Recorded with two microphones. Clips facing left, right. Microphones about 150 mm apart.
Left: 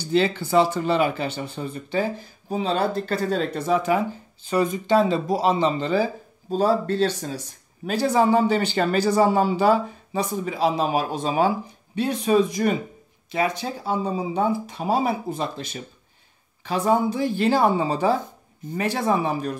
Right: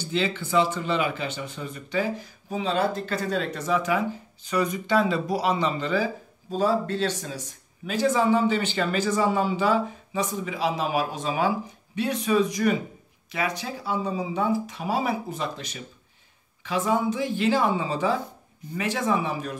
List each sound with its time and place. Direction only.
0.0 s speech: 40° left (ahead or behind)